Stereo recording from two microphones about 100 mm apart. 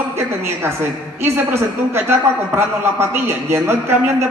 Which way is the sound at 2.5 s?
20° right (ahead or behind).